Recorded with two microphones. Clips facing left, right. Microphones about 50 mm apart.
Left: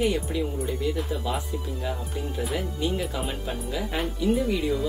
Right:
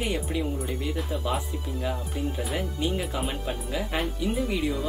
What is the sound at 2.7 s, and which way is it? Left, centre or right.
Speech, centre.